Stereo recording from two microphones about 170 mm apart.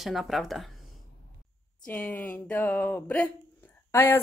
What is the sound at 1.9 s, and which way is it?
A woman's voice, 10° left (ahead or behind).